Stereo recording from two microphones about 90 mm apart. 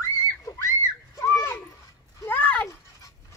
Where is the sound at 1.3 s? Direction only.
35° left (ahead or behind).